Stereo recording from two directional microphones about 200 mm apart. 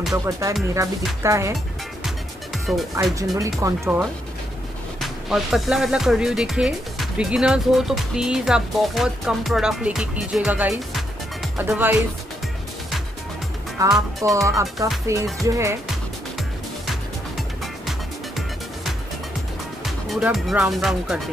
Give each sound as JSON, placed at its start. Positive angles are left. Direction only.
{"t": 0.1, "sound": "speech", "side_deg": -15}
{"t": 2.0, "sound": "music", "side_deg": 0}
{"t": 3.2, "sound": "speech", "side_deg": -15}
{"t": 5.0, "sound": "speech", "side_deg": 0}
{"t": 13.8, "sound": "speech", "side_deg": -15}
{"t": 17.4, "sound": "music", "side_deg": 0}
{"t": 19.8, "sound": "music", "side_deg": 0}
{"t": 20.7, "sound": "speech", "side_deg": 0}